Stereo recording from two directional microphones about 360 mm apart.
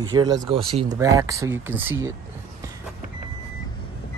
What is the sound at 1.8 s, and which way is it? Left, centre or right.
Speech, right.